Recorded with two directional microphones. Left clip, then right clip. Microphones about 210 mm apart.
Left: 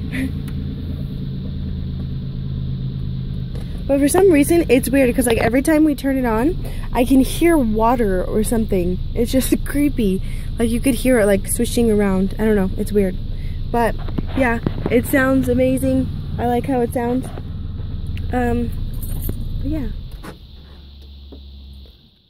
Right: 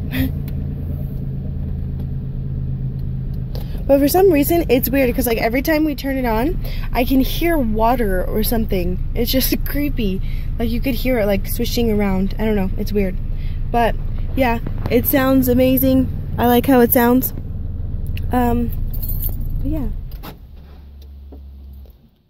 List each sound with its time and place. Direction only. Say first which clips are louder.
3.8 s speech: right 3 dB; 20° right (ahead or behind)
4.2 s speech: left 1 dB; 10° right (ahead or behind); by 12.9 s 15° left (ahead or behind)
13.7 s speech: right 1 dB; centre (ahead or behind)
14.4 s speech: even; 10° right (ahead or behind)
15.5 s speech: right 2 dB; 30° right (ahead or behind); by 17.1 s 50° right (ahead or behind)
18.3 s speech: right 2 dB; 20° right (ahead or behind)